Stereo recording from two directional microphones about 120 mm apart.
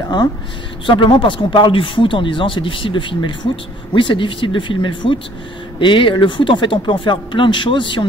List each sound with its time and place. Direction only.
0.8 s speech: 45° left (ahead or behind)